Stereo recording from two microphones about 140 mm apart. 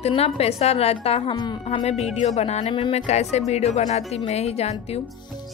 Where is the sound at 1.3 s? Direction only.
30° left (ahead or behind).